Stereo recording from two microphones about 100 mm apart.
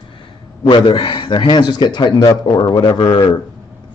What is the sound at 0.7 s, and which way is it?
Speech, 55° left (ahead or behind).